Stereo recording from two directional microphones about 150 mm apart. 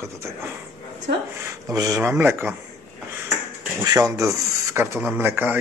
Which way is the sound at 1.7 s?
20° right (ahead or behind).